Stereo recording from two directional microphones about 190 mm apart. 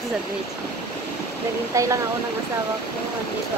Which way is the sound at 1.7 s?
15° right (ahead or behind).